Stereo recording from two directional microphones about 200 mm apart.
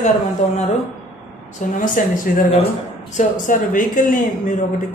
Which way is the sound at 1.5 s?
40° left (ahead or behind).